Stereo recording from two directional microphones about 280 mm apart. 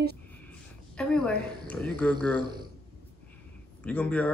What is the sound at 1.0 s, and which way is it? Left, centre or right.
A woman's voice, centre.